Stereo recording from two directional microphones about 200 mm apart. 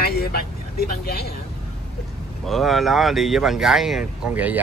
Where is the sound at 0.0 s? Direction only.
55° left (ahead or behind).